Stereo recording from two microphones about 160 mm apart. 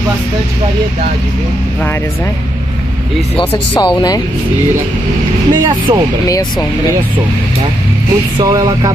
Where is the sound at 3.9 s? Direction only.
25° left (ahead or behind).